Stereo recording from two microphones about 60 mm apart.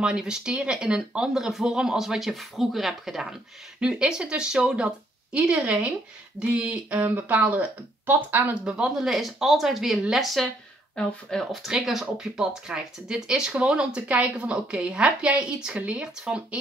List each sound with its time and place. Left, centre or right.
0.0 s a woman's voice: centre
7.0 s speech: right
8.6 s speech: centre
11.0 s speech: centre
11.5 s a woman's voice: centre